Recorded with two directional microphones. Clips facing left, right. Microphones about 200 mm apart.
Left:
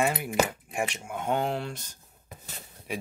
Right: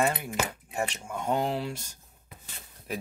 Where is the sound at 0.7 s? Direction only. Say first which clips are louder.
Left 1 dB; 10° left (ahead or behind).